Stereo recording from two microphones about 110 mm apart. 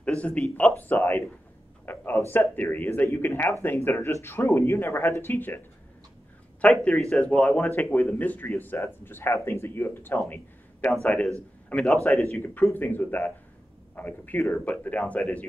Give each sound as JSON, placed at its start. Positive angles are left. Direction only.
{"t": 0.0, "sound": "speech", "side_deg": 10}
{"t": 1.9, "sound": "a sound", "side_deg": 20}
{"t": 2.3, "sound": "speech", "side_deg": 15}
{"t": 6.7, "sound": "speech", "side_deg": 5}
{"t": 10.3, "sound": "a sound", "side_deg": 15}
{"t": 11.0, "sound": "speech", "side_deg": 10}
{"t": 12.7, "sound": "speech", "side_deg": 20}